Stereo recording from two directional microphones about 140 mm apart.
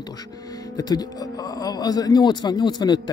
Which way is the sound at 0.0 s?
30° left (ahead or behind).